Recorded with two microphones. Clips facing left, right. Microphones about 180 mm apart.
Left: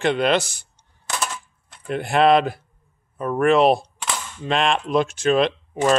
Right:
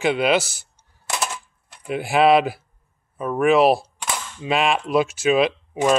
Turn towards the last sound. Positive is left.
turn(degrees=-5)  # may be behind; listen again after turning